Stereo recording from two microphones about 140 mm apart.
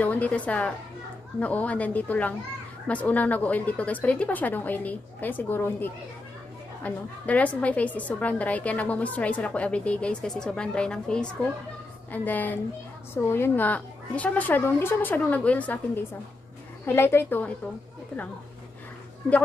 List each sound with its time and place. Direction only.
0.0 s a woman's voice: 10° left (ahead or behind)